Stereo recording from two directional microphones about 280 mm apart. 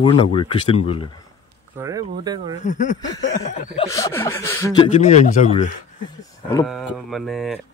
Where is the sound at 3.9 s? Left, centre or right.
Centre.